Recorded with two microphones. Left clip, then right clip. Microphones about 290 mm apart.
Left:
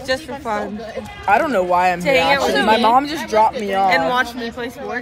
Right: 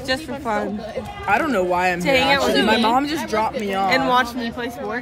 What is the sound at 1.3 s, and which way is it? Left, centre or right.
Speech, centre.